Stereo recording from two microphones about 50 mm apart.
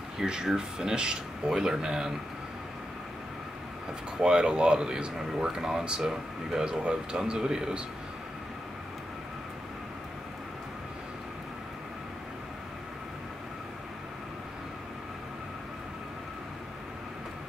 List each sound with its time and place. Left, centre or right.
0.2 s speech: centre
4.2 s speech: centre